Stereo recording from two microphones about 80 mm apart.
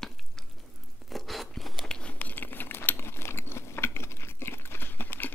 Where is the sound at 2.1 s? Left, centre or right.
Left.